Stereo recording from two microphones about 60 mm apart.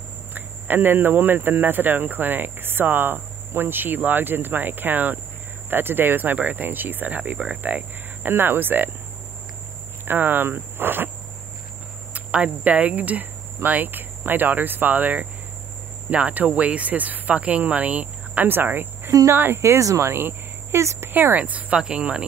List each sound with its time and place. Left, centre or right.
0.3 s speech: right
10.0 s speech: right
12.1 s speech: right
18.5 s speech: right
19.6 s speech: right
20.1 s a sound: right
20.8 s speech: right
21.1 s speech: right